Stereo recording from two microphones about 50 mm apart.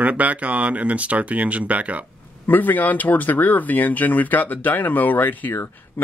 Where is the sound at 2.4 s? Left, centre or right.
Left.